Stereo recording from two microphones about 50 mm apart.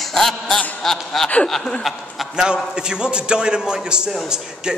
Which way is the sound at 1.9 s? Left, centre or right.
Centre.